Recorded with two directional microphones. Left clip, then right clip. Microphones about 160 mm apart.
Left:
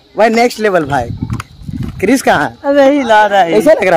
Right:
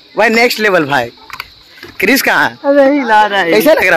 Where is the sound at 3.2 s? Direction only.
70° left (ahead or behind).